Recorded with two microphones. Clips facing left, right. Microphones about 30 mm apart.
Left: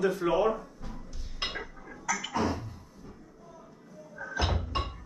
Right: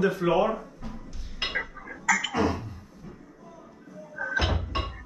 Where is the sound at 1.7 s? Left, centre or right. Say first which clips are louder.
Right 8 dB; right.